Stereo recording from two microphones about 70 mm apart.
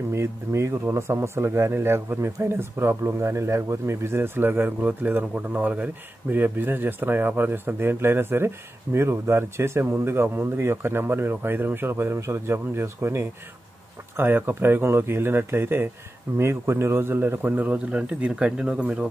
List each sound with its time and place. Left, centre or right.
0.1 s a man's voice: right; by 19.0 s centre